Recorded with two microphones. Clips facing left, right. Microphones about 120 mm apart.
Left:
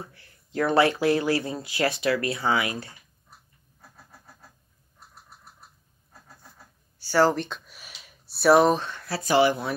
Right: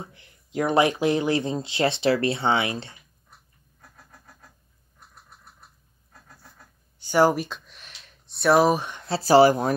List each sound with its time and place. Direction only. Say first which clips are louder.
0.0 s speech: right 1 dB; 20° right (ahead or behind)
7.0 s speech: right 2 dB; 15° right (ahead or behind)
7.4 s a sound: even; centre (ahead or behind)
8.7 s speech: right 3 dB; 15° right (ahead or behind); by 9.8 s 40° right (ahead or behind)